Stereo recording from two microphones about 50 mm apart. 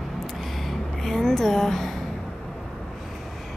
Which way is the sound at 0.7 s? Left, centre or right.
Centre.